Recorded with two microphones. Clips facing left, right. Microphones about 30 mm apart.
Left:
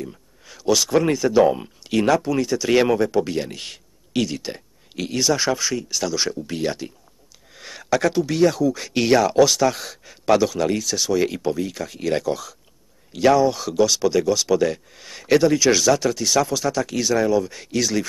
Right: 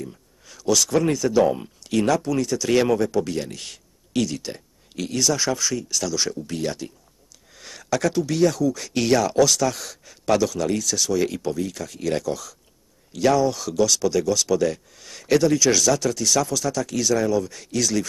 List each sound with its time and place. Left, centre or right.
0.0 s speech: centre